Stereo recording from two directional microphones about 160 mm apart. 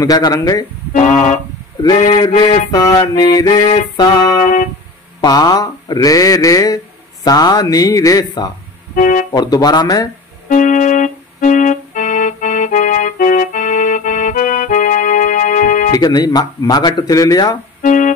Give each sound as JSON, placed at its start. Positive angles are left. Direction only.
{"t": 0.0, "sound": "speech", "side_deg": 25}
{"t": 0.9, "sound": "a sound", "side_deg": 50}
{"t": 2.1, "sound": "speech", "side_deg": 30}
{"t": 4.4, "sound": "music", "side_deg": 55}
{"t": 5.2, "sound": "speech", "side_deg": 25}
{"t": 8.9, "sound": "speech", "side_deg": 55}
{"t": 9.3, "sound": "speech", "side_deg": 25}
{"t": 10.5, "sound": "keyboard", "side_deg": 50}
{"t": 15.9, "sound": "speech", "side_deg": 25}
{"t": 17.8, "sound": "music", "side_deg": 55}